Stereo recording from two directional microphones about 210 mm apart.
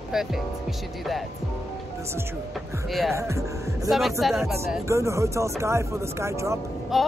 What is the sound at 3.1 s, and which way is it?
Speech, 15° right (ahead or behind).